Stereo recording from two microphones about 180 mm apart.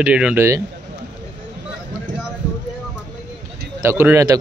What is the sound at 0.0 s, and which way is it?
Speech, 10° right (ahead or behind).